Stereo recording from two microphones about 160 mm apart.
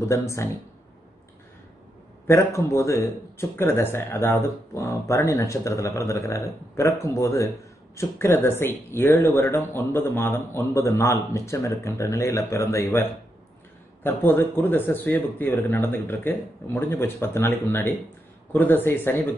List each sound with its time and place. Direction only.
0.1 s speech: 20° left (ahead or behind)
2.2 s speech: 20° left (ahead or behind)